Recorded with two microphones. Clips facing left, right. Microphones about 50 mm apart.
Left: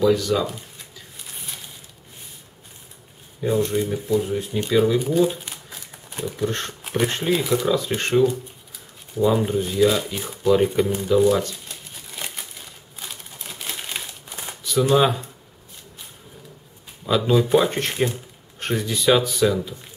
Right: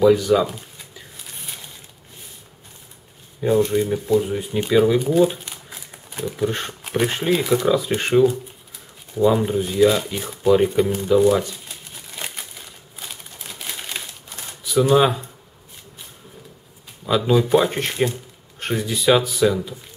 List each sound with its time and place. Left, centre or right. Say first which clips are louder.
0.0 s speech: right 4 dB; centre
3.3 s speech: right 3 dB; centre
5.5 s a sound: right 1 dB; centre
6.9 s speech: right 2 dB; centre
12.2 s crumpling: right 1 dB; centre
13.3 s typewriter: left 1 dB; centre
14.6 s speech: right 2 dB; centre
17.0 s speech: right 1 dB; centre